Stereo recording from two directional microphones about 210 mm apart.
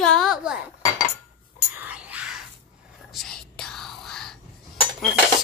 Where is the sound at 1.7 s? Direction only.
5° right (ahead or behind).